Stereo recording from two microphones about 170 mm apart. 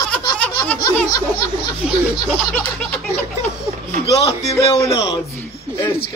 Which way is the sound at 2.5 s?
10° left (ahead or behind).